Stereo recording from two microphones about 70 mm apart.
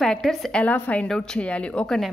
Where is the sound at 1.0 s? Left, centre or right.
Centre.